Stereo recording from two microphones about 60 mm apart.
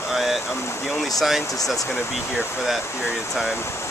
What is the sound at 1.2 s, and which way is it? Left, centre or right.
Speech, centre.